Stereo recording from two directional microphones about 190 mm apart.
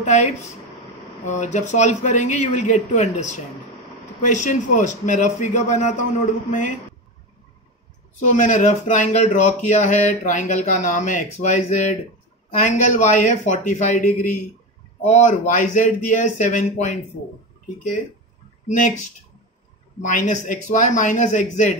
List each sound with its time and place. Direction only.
0.0 s speech: 35° left (ahead or behind)
8.2 s speech: 40° left (ahead or behind)
18.7 s speech: 40° left (ahead or behind)
20.0 s speech: 40° left (ahead or behind)